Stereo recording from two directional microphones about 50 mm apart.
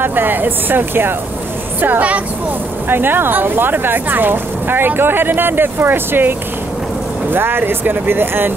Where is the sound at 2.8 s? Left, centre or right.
Right.